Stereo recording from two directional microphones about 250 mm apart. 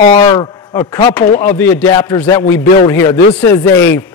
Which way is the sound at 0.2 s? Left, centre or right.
Centre.